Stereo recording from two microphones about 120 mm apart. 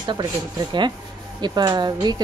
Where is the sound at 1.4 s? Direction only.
35° right (ahead or behind).